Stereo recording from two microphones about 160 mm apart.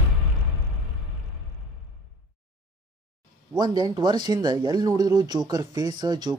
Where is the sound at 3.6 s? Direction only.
25° right (ahead or behind).